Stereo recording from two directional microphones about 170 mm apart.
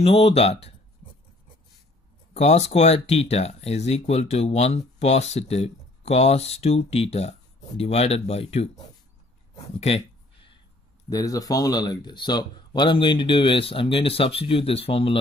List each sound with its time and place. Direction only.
0.0 s speech: 35° left (ahead or behind)
2.3 s speech: 40° left (ahead or behind)
9.8 s a sound: 35° left (ahead or behind)
11.1 s speech: 20° left (ahead or behind)